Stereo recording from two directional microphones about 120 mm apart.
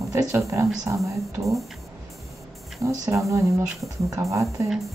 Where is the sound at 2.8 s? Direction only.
30° right (ahead or behind).